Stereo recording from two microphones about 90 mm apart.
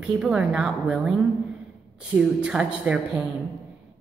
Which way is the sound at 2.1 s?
10° right (ahead or behind).